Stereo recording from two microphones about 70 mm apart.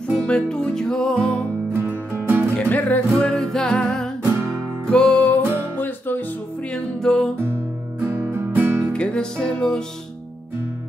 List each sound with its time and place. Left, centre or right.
0.3 s music: centre
1.7 s music: right
2.5 s music: left
3.3 s music: centre; by 6.2 s left
6.7 s music: centre
7.3 s music: right
8.9 s music: centre